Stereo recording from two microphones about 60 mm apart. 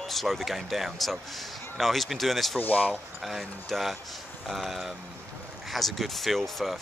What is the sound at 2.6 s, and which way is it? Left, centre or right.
Speech, left.